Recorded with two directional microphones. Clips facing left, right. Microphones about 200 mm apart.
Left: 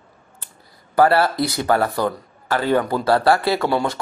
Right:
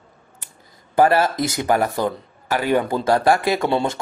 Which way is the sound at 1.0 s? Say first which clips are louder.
Even; 15° right (ahead or behind).